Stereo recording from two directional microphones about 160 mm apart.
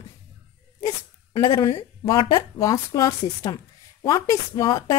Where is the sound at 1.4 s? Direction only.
30° left (ahead or behind).